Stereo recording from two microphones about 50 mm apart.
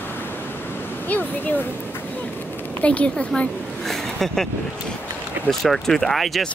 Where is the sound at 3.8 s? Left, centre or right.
Centre.